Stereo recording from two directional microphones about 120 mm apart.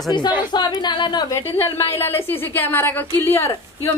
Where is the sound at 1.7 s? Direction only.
20° left (ahead or behind).